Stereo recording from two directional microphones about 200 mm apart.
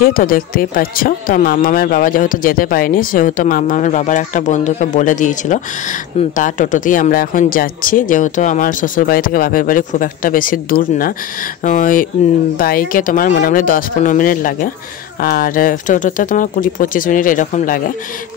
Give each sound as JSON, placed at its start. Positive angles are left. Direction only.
{"t": 0.0, "sound": "speech", "side_deg": 45}